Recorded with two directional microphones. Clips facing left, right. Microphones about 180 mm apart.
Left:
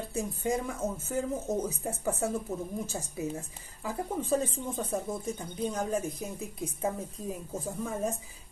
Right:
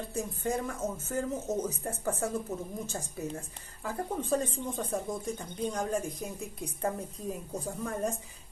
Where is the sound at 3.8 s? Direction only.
Centre (ahead or behind).